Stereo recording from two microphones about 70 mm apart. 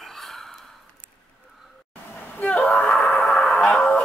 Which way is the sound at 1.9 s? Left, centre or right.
Left.